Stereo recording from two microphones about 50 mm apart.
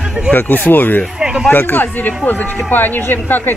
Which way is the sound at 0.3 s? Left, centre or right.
Left.